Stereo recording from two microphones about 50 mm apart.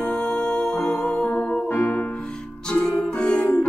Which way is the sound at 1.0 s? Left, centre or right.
Left.